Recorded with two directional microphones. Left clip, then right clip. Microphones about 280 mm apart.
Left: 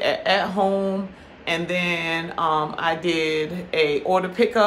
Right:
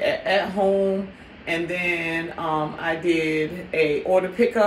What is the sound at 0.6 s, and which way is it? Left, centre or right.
Speech, centre.